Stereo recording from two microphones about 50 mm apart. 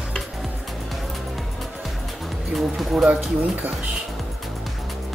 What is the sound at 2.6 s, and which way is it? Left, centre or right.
Speech, centre.